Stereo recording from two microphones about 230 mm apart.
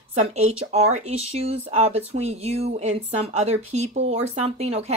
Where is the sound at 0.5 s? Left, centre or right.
Right.